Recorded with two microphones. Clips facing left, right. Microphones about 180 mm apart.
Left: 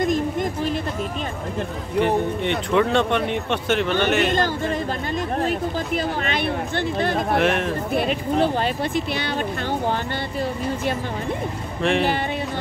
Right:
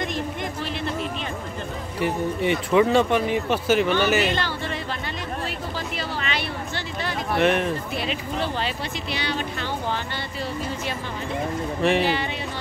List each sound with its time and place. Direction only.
0.0 s a sound: 45° left (ahead or behind)
2.4 s speech: 5° right (ahead or behind)
5.9 s a sound: 50° left (ahead or behind)
7.3 s speech: centre (ahead or behind)
7.9 s speech: 55° left (ahead or behind)
11.8 s speech: 5° right (ahead or behind)